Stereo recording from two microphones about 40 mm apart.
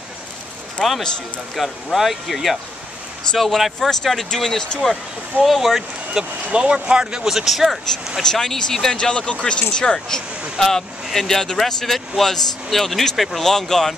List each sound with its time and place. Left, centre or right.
0.8 s a man's voice: left
1.6 s speech: centre
5.4 s speech: centre
6.5 s speech: right
7.2 s speech: centre
8.2 s speech: centre
13.4 s speech: centre